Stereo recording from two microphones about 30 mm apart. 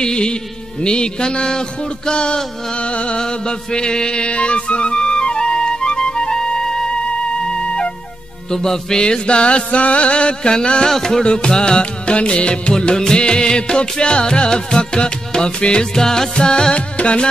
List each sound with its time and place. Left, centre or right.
0.0 s music: left
3.2 s music: left
8.5 s music: centre
9.0 s music: left
10.9 s music: centre; by 12.7 s left
12.8 s music: left
15.9 s music: centre
16.7 s music: left